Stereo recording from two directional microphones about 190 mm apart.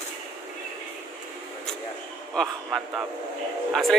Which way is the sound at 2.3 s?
5° right (ahead or behind).